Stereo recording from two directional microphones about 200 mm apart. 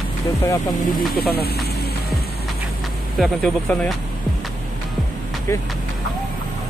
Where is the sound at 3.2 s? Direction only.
Centre (ahead or behind).